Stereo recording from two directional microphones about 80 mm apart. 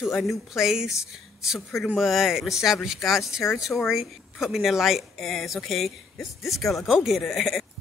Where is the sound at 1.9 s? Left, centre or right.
Centre.